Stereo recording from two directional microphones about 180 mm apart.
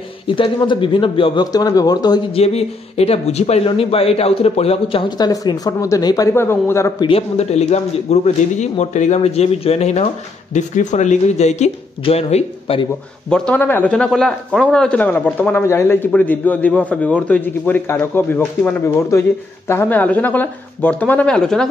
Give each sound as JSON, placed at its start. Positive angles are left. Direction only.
{"t": 0.3, "sound": "a man's voice", "side_deg": 25}
{"t": 2.4, "sound": "a man's voice", "side_deg": 35}
{"t": 7.1, "sound": "speech", "side_deg": 35}
{"t": 13.3, "sound": "speech", "side_deg": 10}